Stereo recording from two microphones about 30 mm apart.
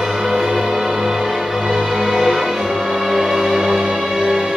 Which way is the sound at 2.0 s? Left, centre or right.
Centre.